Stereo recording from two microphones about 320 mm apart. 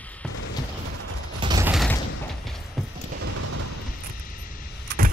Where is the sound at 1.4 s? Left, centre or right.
Centre.